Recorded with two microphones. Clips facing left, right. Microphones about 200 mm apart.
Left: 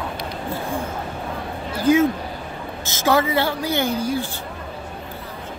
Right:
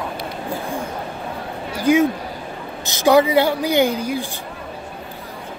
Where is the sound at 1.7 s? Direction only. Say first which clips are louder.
Right 1 dB; 15° right (ahead or behind).